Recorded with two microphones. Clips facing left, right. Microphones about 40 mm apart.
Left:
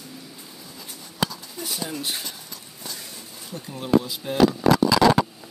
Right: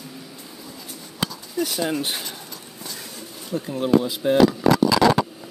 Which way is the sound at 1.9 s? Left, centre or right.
Right.